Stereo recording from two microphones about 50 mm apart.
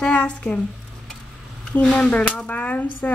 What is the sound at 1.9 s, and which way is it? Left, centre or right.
Speech, left.